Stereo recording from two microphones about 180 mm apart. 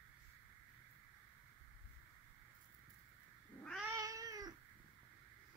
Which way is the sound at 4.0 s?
20° right (ahead or behind).